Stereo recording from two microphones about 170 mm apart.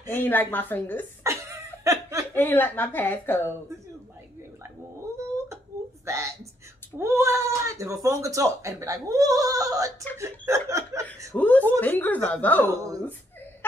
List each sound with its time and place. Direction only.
0.0 s a woman's voice: 10° left (ahead or behind)
1.2 s chuckle: 15° right (ahead or behind)
2.3 s a woman's voice: 10° left (ahead or behind)
6.0 s a sound: 15° right (ahead or behind)
7.0 s speech: 15° right (ahead or behind)
10.1 s chuckle: 15° right (ahead or behind)
11.3 s a woman's voice: 10° left (ahead or behind)
12.7 s speech: 20° right (ahead or behind)